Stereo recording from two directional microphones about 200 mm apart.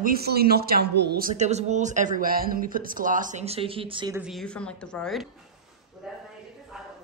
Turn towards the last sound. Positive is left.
turn(degrees=5)  # may be behind; listen again after turning